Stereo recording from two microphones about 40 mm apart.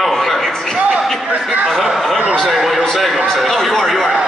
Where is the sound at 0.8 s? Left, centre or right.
Right.